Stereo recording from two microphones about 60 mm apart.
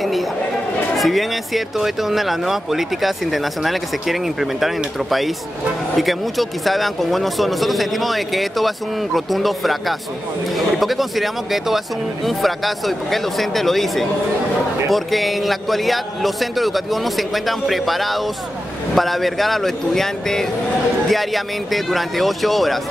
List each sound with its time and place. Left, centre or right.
0.9 s speech: centre